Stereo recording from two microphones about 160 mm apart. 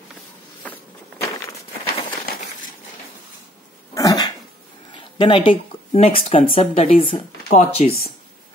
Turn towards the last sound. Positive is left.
turn(degrees=40)  # may be behind; listen again after turning